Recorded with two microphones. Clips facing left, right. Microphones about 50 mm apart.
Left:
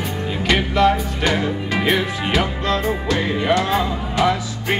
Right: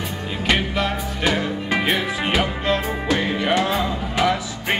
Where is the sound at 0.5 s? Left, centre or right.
Centre.